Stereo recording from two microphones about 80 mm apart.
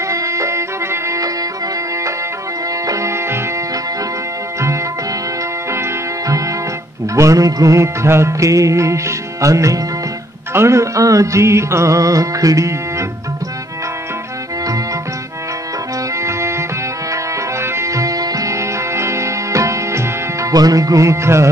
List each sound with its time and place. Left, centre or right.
0.1 s music: right
2.9 s music: right
5.7 s music: right
16.2 s music: right